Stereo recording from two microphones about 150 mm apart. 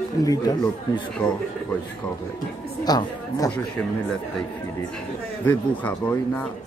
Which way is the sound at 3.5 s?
5° left (ahead or behind).